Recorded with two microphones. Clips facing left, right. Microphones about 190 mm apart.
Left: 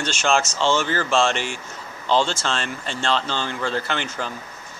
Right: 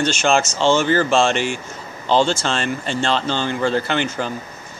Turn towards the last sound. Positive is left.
turn(degrees=-5)  # may be behind; listen again after turning